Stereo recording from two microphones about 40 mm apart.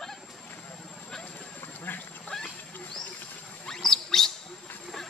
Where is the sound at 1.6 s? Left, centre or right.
Left.